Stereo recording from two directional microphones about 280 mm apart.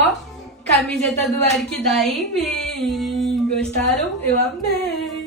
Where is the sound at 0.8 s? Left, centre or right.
Centre.